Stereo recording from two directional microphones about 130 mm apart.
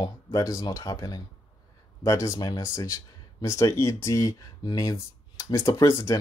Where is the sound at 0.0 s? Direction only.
30° left (ahead or behind).